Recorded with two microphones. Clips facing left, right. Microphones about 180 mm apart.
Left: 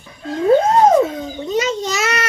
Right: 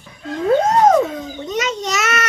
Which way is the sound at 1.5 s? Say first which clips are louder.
Left 3 dB; 30° left (ahead or behind).